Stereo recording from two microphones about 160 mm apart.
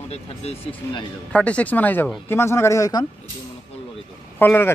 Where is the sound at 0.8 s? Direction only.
20° left (ahead or behind).